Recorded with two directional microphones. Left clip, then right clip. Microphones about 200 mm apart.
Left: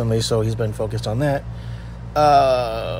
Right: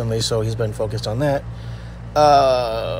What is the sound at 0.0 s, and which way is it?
Speech, 20° left (ahead or behind).